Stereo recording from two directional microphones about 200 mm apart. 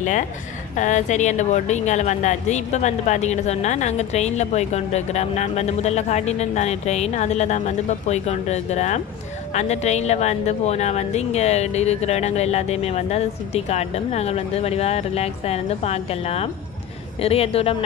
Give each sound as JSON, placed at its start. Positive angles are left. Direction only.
{"t": 0.7, "sound": "a woman's voice", "side_deg": 35}